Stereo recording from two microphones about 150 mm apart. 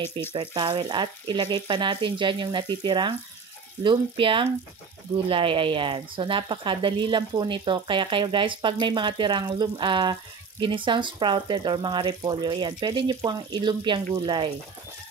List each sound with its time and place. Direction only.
0.3 s speech: 35° right (ahead or behind)